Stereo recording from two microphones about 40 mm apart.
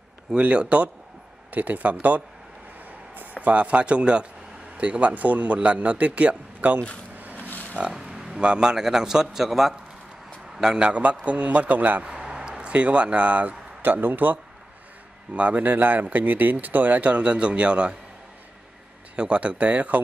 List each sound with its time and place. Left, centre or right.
0.4 s speech: right
1.5 s speech: right
3.4 s speech: right
7.3 s livestock: left
7.8 s a man's voice: centre
10.8 s speech: right
12.0 s speech: centre; by 13.6 s right
14.0 s speech: right
15.3 s speech: right
19.1 s speech: right